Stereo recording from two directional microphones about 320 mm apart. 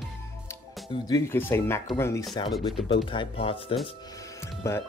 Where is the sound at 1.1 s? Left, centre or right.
Centre.